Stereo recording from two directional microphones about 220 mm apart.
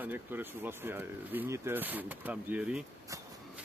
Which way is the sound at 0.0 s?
10° right (ahead or behind).